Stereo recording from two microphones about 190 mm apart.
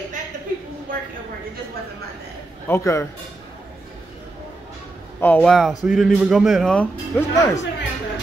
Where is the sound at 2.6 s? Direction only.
15° left (ahead or behind).